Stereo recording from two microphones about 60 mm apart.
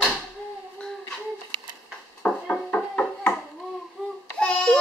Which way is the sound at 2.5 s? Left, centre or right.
Left.